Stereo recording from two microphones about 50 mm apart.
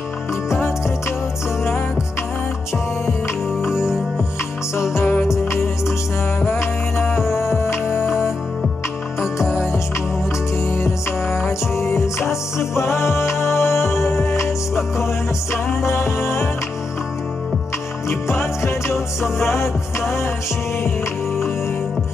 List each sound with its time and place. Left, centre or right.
0.5 s music: left
3.6 s music: centre
4.7 s music: left
6.4 s music: left
9.5 s music: left
15.8 s music: left
18.0 s music: left